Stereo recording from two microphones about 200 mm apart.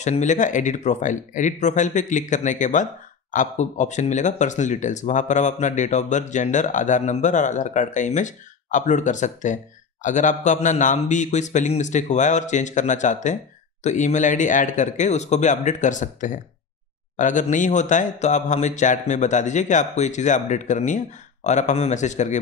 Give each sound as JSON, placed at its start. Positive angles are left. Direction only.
{"t": 0.0, "sound": "speech", "side_deg": 35}